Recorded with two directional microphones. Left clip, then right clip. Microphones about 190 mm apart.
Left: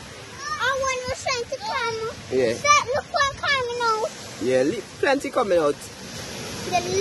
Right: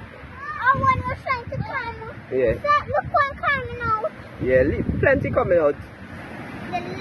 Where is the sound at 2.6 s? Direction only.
45° left (ahead or behind).